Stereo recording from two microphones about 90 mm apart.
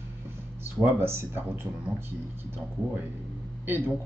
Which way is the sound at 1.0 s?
25° right (ahead or behind).